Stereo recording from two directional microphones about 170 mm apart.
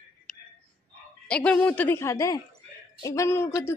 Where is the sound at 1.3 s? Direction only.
5° left (ahead or behind).